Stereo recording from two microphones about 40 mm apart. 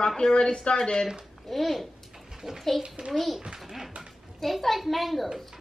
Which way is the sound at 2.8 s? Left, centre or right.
Right.